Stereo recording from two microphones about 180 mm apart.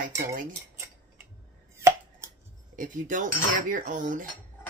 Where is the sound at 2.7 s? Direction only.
45° right (ahead or behind).